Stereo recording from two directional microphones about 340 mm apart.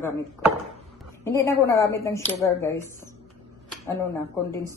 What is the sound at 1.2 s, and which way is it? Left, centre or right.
Speech, centre.